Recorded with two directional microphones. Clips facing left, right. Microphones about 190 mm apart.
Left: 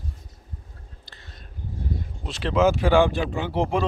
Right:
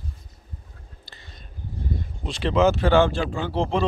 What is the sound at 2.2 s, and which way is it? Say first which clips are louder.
Speech: right 1 dB; 5° left (ahead or behind).